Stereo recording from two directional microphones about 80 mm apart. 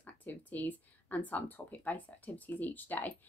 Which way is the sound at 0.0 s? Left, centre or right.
Left.